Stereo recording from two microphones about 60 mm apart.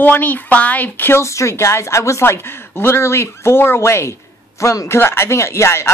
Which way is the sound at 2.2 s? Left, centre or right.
Left.